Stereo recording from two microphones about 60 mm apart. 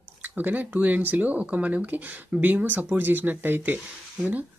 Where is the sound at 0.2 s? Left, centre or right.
Right.